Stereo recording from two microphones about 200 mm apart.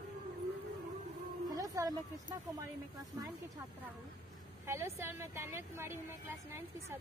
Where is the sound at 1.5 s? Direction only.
15° right (ahead or behind).